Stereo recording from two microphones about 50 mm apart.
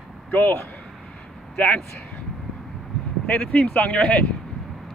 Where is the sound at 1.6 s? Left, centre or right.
Left.